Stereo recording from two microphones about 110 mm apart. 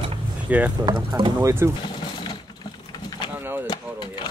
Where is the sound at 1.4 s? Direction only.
25° right (ahead or behind).